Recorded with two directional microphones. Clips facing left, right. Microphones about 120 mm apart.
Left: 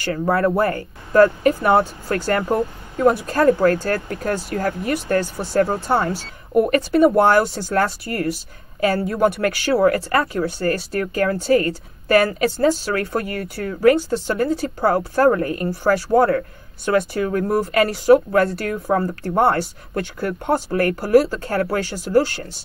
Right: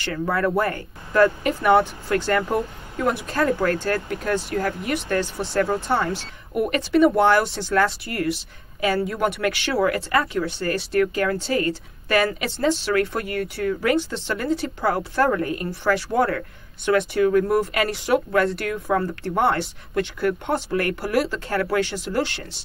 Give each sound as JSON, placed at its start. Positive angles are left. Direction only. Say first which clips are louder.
{"t": 0.0, "sound": "speech", "louder": "left 4 dB", "side_deg": 35}